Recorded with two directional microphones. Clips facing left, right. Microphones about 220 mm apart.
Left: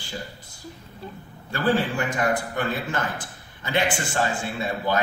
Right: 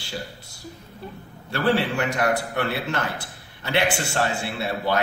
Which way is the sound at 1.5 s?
70° right (ahead or behind).